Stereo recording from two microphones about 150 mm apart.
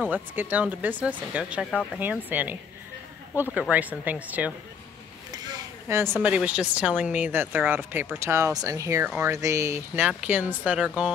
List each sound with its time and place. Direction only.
0.0 s speech: 10° right (ahead or behind)
5.3 s a sound: 20° right (ahead or behind)
6.2 s speech: 10° right (ahead or behind)